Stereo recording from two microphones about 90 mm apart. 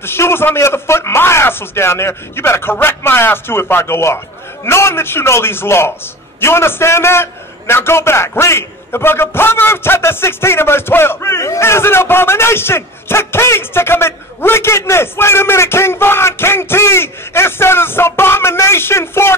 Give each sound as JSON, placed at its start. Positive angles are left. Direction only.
{"t": 0.0, "sound": "a man's voice", "side_deg": 25}